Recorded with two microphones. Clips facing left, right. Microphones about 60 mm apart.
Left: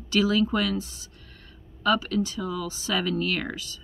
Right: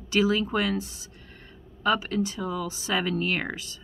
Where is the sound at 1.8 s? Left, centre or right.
Right.